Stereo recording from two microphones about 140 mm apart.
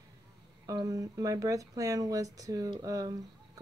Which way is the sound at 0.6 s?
25° right (ahead or behind).